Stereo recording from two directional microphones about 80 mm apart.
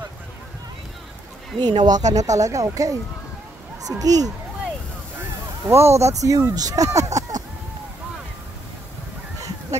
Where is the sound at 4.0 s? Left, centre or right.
Right.